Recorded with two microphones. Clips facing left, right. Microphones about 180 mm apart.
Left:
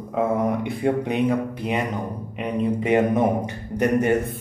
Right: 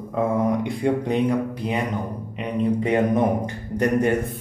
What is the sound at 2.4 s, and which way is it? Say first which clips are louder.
Speech: right 1 dB; 5° left (ahead or behind).